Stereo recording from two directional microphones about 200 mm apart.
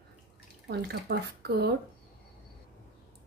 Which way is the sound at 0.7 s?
55° right (ahead or behind).